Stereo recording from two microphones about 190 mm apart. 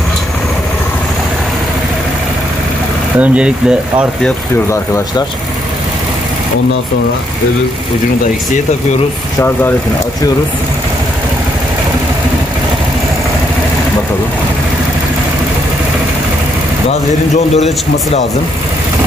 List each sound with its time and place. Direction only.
3.2 s speech: 5° right (ahead or behind)
4.2 s speech: 15° left (ahead or behind)
17.6 s a man's voice: 35° left (ahead or behind)